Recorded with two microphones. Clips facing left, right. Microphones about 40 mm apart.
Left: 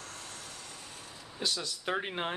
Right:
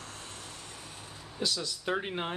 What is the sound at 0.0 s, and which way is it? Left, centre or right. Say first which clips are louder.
Vehicle: right 1 dB; right.